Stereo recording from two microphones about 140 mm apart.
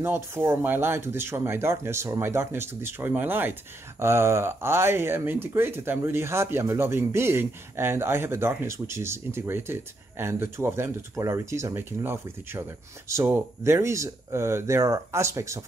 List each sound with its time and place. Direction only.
0.0 s speech: 15° right (ahead or behind)